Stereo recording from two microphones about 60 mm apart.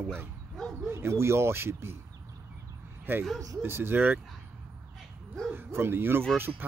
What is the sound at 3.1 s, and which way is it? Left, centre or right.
Speech, right.